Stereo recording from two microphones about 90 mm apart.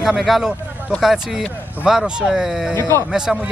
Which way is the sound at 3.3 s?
Centre (ahead or behind).